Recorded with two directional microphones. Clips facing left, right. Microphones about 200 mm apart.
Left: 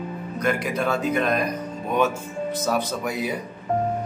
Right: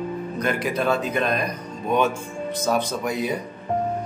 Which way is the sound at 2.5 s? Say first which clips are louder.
Right 3 dB; 5° left (ahead or behind).